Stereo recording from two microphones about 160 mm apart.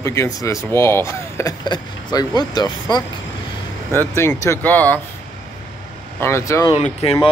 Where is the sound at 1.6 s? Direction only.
25° left (ahead or behind).